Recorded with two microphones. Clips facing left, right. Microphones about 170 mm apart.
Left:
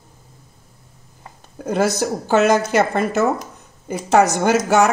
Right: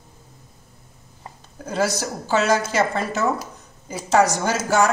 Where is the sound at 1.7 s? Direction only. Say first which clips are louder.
Left 5 dB; 55° left (ahead or behind).